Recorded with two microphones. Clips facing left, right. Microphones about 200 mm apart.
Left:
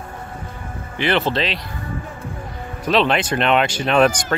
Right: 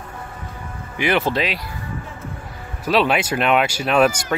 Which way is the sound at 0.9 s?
10° right (ahead or behind).